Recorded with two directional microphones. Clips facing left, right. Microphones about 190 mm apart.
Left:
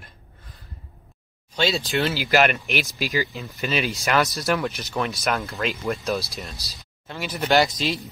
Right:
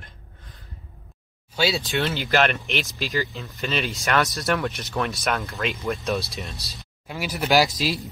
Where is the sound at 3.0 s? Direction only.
15° left (ahead or behind).